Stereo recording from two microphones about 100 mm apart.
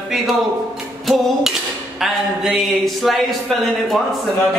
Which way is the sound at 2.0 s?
5° right (ahead or behind).